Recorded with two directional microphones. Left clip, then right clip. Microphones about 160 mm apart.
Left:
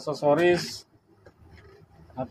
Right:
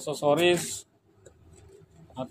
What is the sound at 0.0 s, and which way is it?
Speech, 25° right (ahead or behind).